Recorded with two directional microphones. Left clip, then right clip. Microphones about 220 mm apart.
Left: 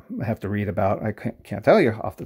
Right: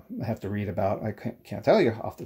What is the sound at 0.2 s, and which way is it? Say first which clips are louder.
Speech: left 5 dB; 30° left (ahead or behind).